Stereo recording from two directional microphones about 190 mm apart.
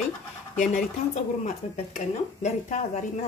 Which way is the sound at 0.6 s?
40° left (ahead or behind).